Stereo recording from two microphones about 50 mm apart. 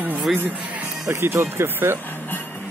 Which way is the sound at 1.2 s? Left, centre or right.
Right.